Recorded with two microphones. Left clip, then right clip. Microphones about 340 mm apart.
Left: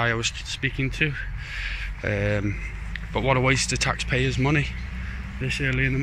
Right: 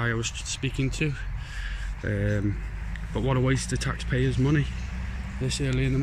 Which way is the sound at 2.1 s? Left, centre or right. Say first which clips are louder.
Left 4 dB; left.